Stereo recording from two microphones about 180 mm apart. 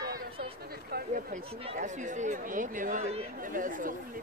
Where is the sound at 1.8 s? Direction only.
45° right (ahead or behind).